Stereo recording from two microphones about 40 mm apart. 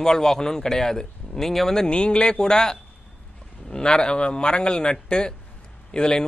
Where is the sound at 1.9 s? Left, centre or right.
Left.